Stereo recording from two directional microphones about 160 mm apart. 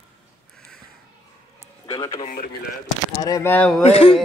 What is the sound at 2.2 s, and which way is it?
Speech, 60° left (ahead or behind).